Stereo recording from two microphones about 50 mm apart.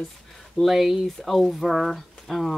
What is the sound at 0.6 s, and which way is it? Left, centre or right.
Speech, centre.